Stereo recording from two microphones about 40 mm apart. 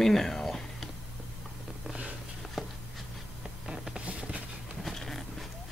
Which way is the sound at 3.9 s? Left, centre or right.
Right.